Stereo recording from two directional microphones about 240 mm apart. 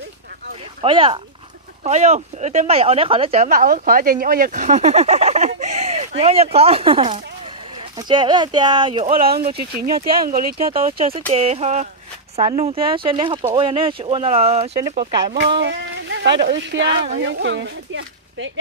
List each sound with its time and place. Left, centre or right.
0.8 s speech: right
15.5 s speech: right